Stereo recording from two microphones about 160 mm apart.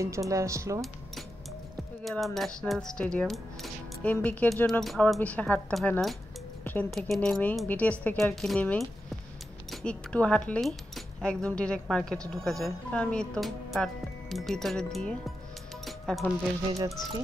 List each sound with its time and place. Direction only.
0.0 s speech: 20° right (ahead or behind)
2.0 s a woman's voice: centre (ahead or behind)
6.6 s a sound: 10° left (ahead or behind)
6.9 s a woman's voice: centre (ahead or behind)
15.8 s music: centre (ahead or behind)